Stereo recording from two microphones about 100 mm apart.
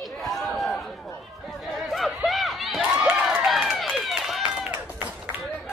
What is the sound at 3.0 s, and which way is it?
Run, 5° right (ahead or behind).